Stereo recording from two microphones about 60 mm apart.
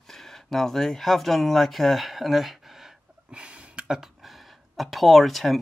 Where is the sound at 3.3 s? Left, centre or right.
Centre.